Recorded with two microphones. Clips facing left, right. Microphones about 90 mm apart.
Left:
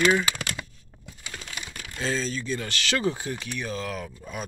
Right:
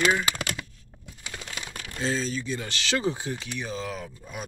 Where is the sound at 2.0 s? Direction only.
15° right (ahead or behind).